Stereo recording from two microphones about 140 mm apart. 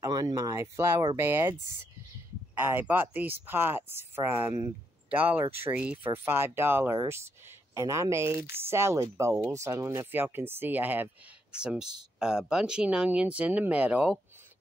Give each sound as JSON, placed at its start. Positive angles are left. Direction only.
{"t": 0.0, "sound": "speech", "side_deg": -25}
{"t": 2.5, "sound": "speech", "side_deg": -15}